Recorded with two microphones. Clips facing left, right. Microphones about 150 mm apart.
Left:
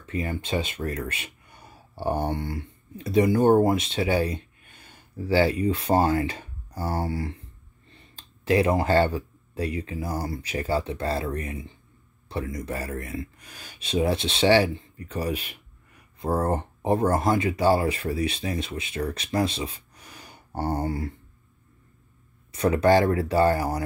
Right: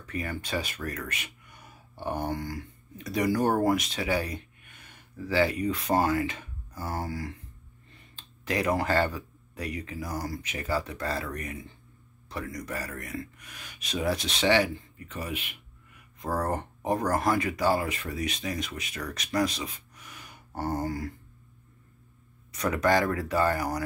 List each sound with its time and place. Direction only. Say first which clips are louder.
0.0 s speech: left 4 dB; 25° left (ahead or behind)
22.5 s speech: left 5 dB; 30° left (ahead or behind)